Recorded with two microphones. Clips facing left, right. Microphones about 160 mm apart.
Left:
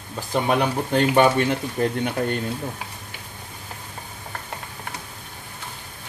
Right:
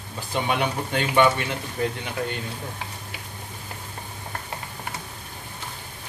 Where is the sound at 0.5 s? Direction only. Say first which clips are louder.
Left 5 dB; 40° left (ahead or behind).